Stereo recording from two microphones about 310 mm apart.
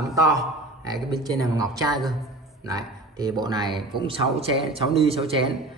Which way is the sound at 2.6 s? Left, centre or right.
Centre.